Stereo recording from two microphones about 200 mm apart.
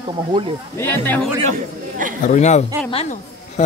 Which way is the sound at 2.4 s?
35° left (ahead or behind).